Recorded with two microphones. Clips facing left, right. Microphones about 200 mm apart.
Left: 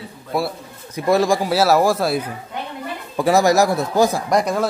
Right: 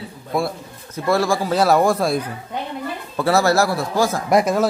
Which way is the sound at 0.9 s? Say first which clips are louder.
Left 2 dB; 15° left (ahead or behind).